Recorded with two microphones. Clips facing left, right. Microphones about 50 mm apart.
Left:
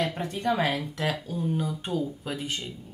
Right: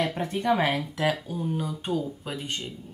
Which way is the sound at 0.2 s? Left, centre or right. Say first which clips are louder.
Right 2 dB; right.